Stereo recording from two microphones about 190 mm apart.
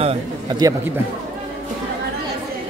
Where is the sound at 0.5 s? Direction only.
20° right (ahead or behind).